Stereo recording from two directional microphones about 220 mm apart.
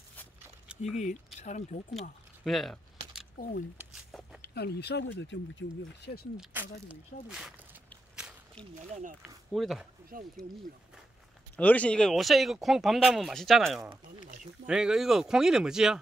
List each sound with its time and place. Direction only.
0.9 s speech: 35° left (ahead or behind)
2.4 s a sound: centre (ahead or behind)
3.3 s speech: 40° left (ahead or behind)
3.7 s a sound: centre (ahead or behind)
4.4 s speech: 50° left (ahead or behind)
6.3 s speech: 5° right (ahead or behind)
7.9 s walk: centre (ahead or behind)
9.5 s speech: centre (ahead or behind)
10.1 s speech: 40° right (ahead or behind)
11.5 s speech: 5° left (ahead or behind)
14.3 s speech: 35° right (ahead or behind)
14.7 s speech: 5° right (ahead or behind)